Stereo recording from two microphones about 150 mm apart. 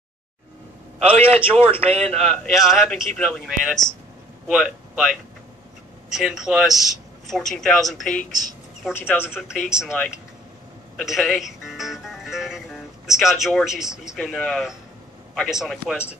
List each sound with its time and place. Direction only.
0.9 s a man's voice: 40° right (ahead or behind)
2.2 s speech: centre (ahead or behind)
9.0 s a woman's voice: 15° left (ahead or behind)
9.3 s speech: 5° right (ahead or behind)
11.0 s music: centre (ahead or behind)
14.1 s speech: 5° left (ahead or behind)